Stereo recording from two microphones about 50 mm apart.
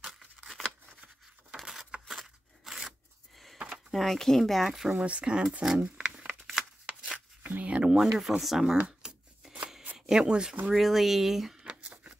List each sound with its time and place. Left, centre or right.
0.0 s tearing: centre
1.6 s a sound: centre
3.7 s speech: centre
4.9 s speech: right
5.9 s crumpling: centre
7.4 s speech: right
8.0 s speech: centre
9.0 s scissors: centre
9.9 s speech: centre
10.7 s speech: centre
11.6 s a sound: right